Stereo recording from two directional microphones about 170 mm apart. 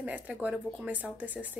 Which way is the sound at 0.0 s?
10° right (ahead or behind).